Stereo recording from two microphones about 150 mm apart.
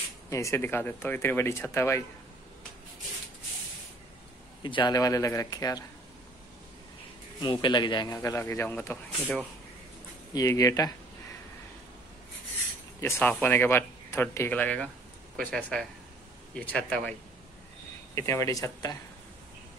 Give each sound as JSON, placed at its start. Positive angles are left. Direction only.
{"t": 0.3, "sound": "speech", "side_deg": 20}
{"t": 4.6, "sound": "speech", "side_deg": 30}
{"t": 7.3, "sound": "speech", "side_deg": 30}
{"t": 10.3, "sound": "speech", "side_deg": 20}
{"t": 13.0, "sound": "speech", "side_deg": 15}
{"t": 18.1, "sound": "speech", "side_deg": 20}